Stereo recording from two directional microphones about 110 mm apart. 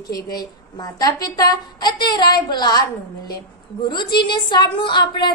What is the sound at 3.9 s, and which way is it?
A woman's voice, 45° left (ahead or behind).